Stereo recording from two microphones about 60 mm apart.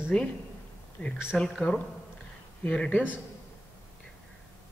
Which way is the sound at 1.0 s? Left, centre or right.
Left.